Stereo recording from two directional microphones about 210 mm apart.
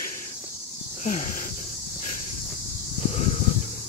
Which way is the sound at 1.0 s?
35° left (ahead or behind).